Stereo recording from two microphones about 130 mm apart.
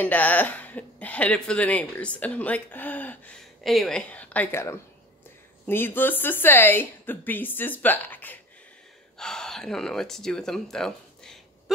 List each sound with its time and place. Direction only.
0.0 s speech: 15° left (ahead or behind)
3.6 s speech: centre (ahead or behind)